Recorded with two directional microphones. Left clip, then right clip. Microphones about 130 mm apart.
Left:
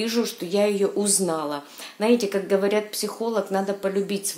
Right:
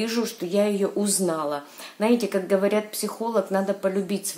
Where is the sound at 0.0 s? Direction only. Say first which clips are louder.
Left 1 dB; 20° left (ahead or behind).